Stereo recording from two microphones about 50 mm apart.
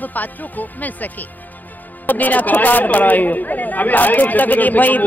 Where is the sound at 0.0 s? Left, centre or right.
Left.